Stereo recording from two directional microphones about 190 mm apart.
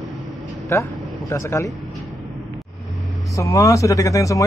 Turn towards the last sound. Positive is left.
turn(degrees=15)  # may be behind; listen again after turning